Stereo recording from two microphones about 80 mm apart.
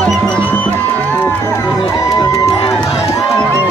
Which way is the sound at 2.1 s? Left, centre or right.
Left.